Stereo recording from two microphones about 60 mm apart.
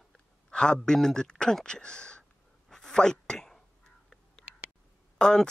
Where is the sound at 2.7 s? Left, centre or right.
Centre.